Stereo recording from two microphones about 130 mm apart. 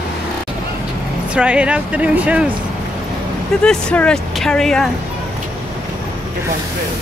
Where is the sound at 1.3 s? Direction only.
10° right (ahead or behind).